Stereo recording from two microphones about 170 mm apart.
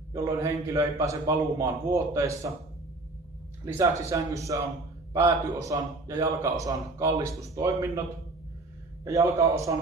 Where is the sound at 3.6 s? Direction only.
15° right (ahead or behind).